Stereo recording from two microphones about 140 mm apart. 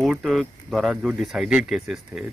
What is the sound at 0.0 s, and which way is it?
Speech, centre (ahead or behind).